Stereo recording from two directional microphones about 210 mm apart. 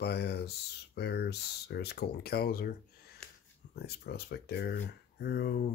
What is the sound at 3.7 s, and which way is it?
Speech, 50° left (ahead or behind).